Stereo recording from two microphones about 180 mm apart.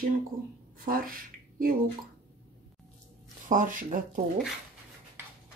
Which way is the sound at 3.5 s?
50° right (ahead or behind).